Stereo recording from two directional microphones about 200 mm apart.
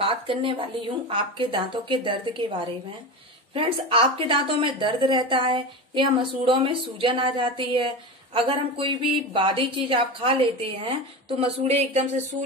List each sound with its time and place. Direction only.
0.0 s speech: 25° right (ahead or behind)